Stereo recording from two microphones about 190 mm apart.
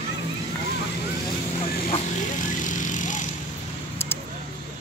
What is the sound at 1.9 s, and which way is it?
Vehicle, 40° left (ahead or behind).